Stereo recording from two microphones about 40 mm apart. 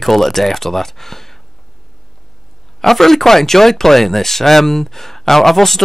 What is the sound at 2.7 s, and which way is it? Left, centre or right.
Speech, centre.